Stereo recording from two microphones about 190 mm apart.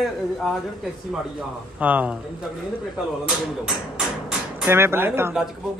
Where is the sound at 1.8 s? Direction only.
5° right (ahead or behind).